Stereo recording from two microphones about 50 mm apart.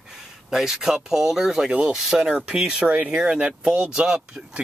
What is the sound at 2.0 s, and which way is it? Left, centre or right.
Speech, centre.